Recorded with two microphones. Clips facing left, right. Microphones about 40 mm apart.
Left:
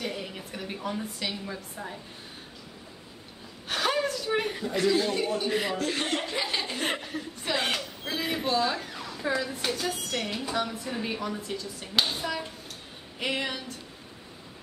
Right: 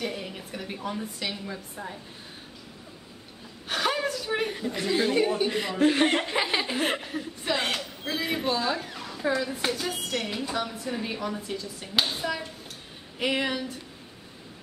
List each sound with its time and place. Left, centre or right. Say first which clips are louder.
0.0 s speech: right 1 dB; centre
3.6 s whimper: even; centre
4.8 s speech: right 2 dB; centre
5.5 s speech: left 1 dB; centre
5.8 s speech: right 7 dB; right
6.6 s speech: right 3 dB; centre